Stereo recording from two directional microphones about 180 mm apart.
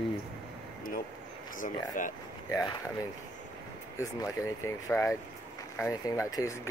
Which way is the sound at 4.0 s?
15° left (ahead or behind).